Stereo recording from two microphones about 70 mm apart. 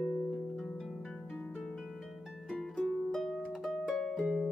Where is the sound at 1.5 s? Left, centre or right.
Centre.